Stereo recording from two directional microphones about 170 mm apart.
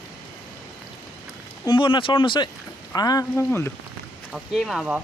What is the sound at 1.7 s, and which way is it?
Speech, 30° left (ahead or behind).